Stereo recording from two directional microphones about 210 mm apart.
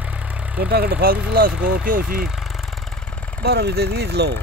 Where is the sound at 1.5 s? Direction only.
5° right (ahead or behind).